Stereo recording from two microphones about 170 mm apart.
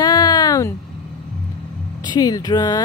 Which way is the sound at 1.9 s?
20° left (ahead or behind).